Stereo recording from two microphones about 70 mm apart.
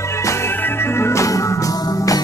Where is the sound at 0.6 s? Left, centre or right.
Left.